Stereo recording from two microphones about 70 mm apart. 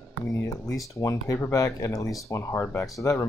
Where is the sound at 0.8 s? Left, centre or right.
Left.